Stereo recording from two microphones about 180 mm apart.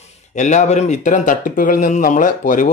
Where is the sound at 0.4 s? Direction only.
40° left (ahead or behind).